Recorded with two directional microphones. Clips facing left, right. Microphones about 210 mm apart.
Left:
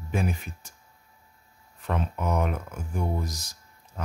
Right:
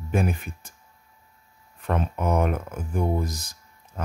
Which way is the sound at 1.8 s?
50° right (ahead or behind).